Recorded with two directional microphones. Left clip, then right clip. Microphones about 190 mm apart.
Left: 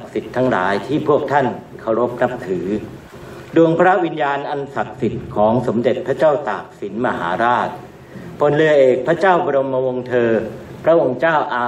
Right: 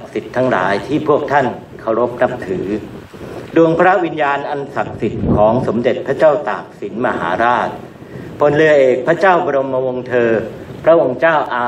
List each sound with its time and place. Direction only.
0.1 s a man's voice: 30° right (ahead or behind)